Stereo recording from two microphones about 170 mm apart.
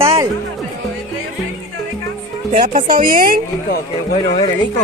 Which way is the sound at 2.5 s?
55° right (ahead or behind).